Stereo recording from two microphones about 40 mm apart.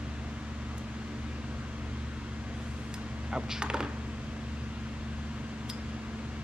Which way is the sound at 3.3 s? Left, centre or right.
Right.